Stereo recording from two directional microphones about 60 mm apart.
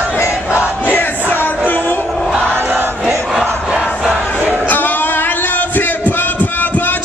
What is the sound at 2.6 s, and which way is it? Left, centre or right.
Crowd, right.